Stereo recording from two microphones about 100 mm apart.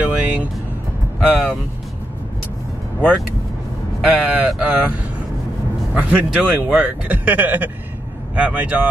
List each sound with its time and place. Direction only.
0.0 s music: 15° right (ahead or behind)
1.3 s speech: centre (ahead or behind)
4.0 s speech: 10° right (ahead or behind)
5.9 s speech: 15° right (ahead or behind)